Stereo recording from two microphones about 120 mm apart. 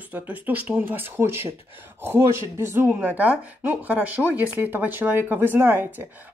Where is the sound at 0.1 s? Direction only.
15° right (ahead or behind).